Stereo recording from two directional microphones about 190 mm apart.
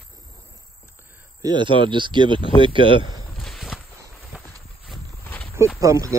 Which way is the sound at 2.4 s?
25° left (ahead or behind).